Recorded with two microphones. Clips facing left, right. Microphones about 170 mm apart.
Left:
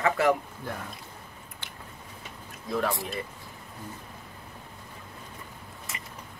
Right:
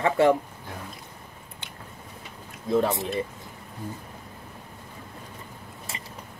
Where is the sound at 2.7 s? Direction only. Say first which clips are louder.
Right 6 dB; 20° right (ahead or behind).